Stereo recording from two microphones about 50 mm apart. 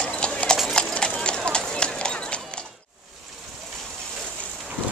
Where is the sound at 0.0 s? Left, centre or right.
Left.